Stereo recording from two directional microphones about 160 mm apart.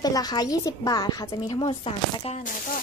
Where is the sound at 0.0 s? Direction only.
25° left (ahead or behind).